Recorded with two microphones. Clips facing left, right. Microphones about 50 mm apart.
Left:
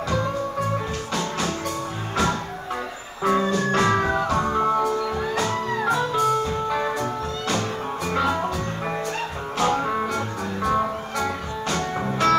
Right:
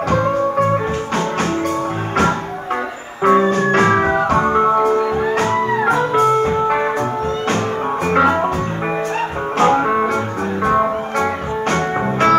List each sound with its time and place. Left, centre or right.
0.1 s music: right
3.3 s music: right
9.6 s music: right